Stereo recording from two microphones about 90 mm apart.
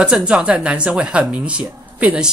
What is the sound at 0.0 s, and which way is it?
Speech, 10° right (ahead or behind).